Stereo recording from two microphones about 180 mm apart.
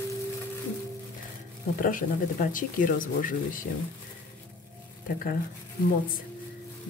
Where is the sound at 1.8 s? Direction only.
50° left (ahead or behind).